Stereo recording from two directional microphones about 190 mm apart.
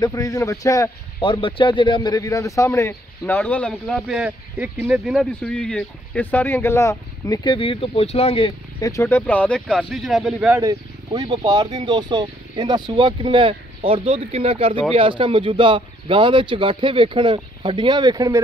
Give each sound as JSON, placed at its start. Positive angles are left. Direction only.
{"t": 0.0, "sound": "speech", "side_deg": 20}
{"t": 4.2, "sound": "speech", "side_deg": -10}
{"t": 8.8, "sound": "speech", "side_deg": 15}
{"t": 10.5, "sound": "speech", "side_deg": -15}